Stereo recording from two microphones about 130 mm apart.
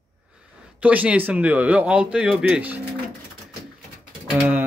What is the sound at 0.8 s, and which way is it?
Speech, 10° right (ahead or behind).